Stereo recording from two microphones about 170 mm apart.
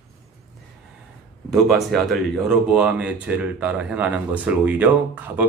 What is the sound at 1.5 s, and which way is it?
Speech, centre (ahead or behind).